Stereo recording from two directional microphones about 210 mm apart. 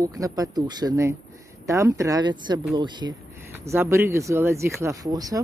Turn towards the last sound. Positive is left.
turn(degrees=-15)  # may be behind; listen again after turning